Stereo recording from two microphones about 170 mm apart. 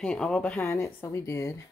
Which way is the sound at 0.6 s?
15° left (ahead or behind).